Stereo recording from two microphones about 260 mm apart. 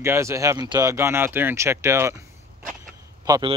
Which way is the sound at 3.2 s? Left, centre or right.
Centre.